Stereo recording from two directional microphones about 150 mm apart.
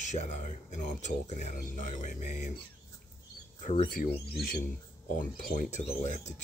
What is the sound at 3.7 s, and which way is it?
Speech, 55° left (ahead or behind).